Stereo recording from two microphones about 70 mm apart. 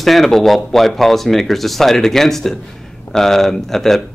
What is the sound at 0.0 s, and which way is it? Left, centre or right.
Speech, centre.